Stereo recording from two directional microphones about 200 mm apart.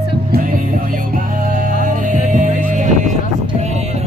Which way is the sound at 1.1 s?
40° right (ahead or behind).